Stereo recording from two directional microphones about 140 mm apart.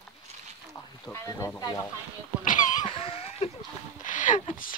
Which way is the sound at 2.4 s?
65° left (ahead or behind).